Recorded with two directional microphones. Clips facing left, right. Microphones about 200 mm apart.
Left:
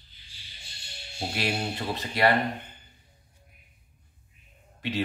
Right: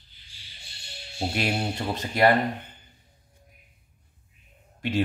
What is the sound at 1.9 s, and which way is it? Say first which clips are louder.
Speech: right 3 dB; 45° right (ahead or behind).